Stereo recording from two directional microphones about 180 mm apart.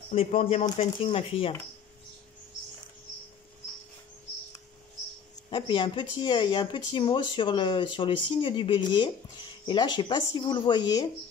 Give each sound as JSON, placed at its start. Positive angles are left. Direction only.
{"t": 0.3, "sound": "speech", "side_deg": 35}
{"t": 5.5, "sound": "speech", "side_deg": 25}